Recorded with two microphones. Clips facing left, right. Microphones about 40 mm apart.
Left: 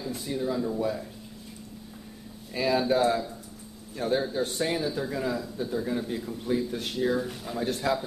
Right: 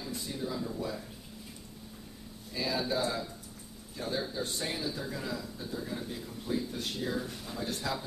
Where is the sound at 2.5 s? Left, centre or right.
Left.